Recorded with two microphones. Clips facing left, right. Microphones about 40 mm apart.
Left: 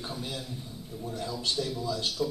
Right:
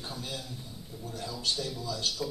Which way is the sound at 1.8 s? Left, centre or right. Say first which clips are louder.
Left 3 dB; left.